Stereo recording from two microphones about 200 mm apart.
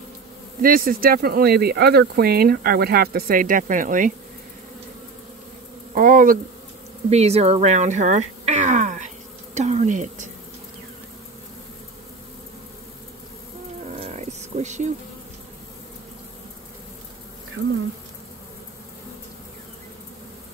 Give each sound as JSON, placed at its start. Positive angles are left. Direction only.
{"t": 0.6, "sound": "speech", "side_deg": -45}
{"t": 5.9, "sound": "speech", "side_deg": -45}
{"t": 7.1, "sound": "speech", "side_deg": -30}
{"t": 13.8, "sound": "dog", "side_deg": -30}